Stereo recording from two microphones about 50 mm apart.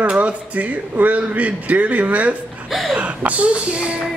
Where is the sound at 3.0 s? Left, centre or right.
Right.